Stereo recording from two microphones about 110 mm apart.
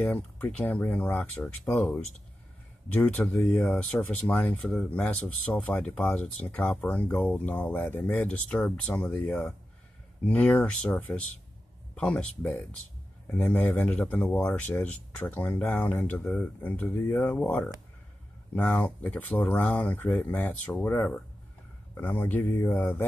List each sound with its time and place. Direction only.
0.0 s speech: 15° left (ahead or behind)
3.3 s speech: 20° left (ahead or behind)